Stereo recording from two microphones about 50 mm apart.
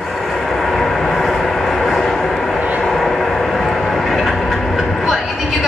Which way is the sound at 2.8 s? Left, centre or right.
Centre.